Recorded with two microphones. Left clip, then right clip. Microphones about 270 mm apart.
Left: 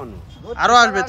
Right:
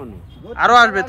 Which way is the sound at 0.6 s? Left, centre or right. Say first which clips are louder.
Right 2 dB; centre.